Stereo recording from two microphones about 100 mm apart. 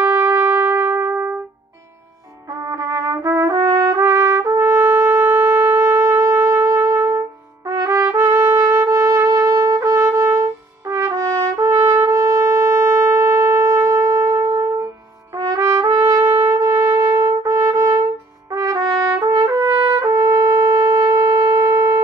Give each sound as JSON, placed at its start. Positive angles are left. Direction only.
{"t": 0.0, "sound": "trumpet", "side_deg": -30}
{"t": 2.6, "sound": "trumpet", "side_deg": -30}
{"t": 6.0, "sound": "shofar", "side_deg": -30}
{"t": 7.1, "sound": "trumpet", "side_deg": -30}
{"t": 18.5, "sound": "brass instrument", "side_deg": -30}
{"t": 18.9, "sound": "trumpet", "side_deg": -30}